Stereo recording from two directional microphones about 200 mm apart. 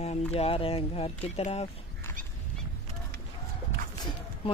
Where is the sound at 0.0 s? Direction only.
30° left (ahead or behind).